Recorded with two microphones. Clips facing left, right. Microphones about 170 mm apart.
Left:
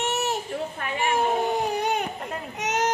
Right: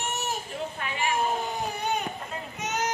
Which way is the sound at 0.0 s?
70° left (ahead or behind).